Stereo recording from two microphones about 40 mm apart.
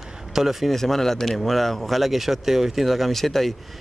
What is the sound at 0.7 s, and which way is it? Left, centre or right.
A man's voice, centre.